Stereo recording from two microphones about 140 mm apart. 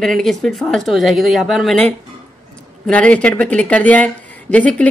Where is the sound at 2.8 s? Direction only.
10° left (ahead or behind).